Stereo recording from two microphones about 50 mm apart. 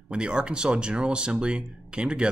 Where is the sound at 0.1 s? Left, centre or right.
Centre.